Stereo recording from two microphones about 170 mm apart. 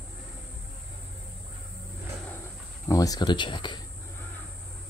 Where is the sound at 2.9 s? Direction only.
20° left (ahead or behind).